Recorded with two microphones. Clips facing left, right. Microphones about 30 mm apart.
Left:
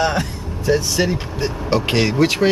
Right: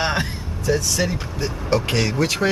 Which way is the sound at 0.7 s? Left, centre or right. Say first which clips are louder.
Left 3 dB; left.